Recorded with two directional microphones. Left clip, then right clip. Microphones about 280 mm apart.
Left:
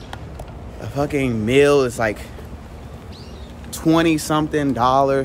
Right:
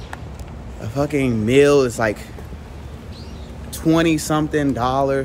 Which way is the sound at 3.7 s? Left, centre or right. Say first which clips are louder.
Even; centre.